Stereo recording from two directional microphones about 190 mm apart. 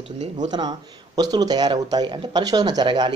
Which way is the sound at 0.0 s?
35° right (ahead or behind).